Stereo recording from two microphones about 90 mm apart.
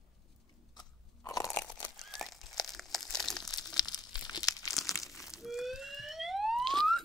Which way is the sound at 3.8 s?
50° left (ahead or behind).